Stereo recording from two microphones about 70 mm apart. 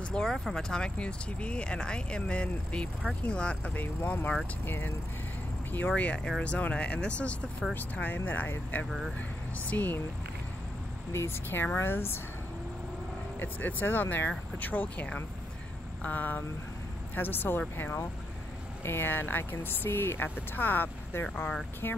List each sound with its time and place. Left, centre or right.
0.0 s speech: centre
3.8 s speech: left
5.9 s speech: centre
11.1 s speech: left
13.4 s speech: left